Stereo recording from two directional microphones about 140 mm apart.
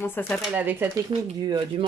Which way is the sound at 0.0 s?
15° left (ahead or behind).